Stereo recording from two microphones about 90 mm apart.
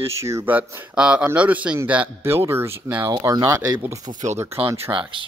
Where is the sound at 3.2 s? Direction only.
40° right (ahead or behind).